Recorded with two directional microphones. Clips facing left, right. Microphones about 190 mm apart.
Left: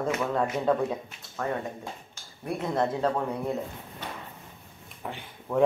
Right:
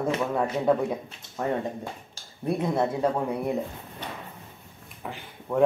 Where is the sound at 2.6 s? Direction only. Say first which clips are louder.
Right 1 dB; 10° right (ahead or behind).